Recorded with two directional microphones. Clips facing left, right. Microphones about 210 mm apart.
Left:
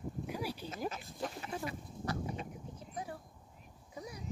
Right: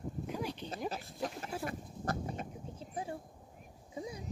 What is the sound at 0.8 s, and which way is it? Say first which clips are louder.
Speech: right 1 dB; 35° right (ahead or behind).